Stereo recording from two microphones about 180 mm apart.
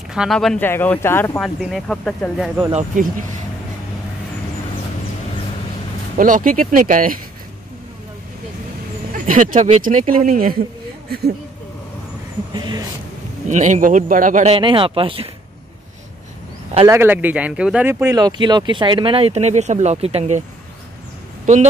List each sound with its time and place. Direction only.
0.1 s speech: centre (ahead or behind); by 1.4 s 15° left (ahead or behind)
1.4 s speech: centre (ahead or behind)
6.1 s speech: 45° right (ahead or behind)
9.1 s speech: 45° right (ahead or behind)
11.1 s speech: 60° right (ahead or behind)
12.5 s speech: 25° right (ahead or behind)
13.5 s speech: 40° right (ahead or behind)
14.5 s speech: 30° right (ahead or behind)
16.8 s speech: 15° right (ahead or behind); by 20.4 s 40° right (ahead or behind)